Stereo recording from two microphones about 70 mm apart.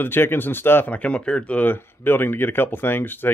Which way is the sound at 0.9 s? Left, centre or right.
Centre.